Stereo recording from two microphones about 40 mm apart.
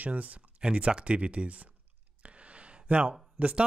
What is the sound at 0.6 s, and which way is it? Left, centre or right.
Speech, right.